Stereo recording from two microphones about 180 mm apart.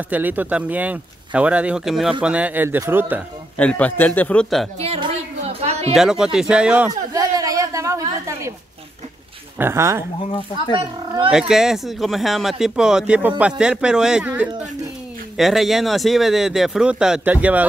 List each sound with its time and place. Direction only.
0.1 s speech: 10° right (ahead or behind)
3.5 s a man's voice: 5° left (ahead or behind)
4.7 s a sound: 35° right (ahead or behind)
5.9 s speech: 5° right (ahead or behind)
7.1 s a sound: 20° right (ahead or behind)
9.6 s speech: 15° right (ahead or behind)
11.2 s speech: 5° right (ahead or behind)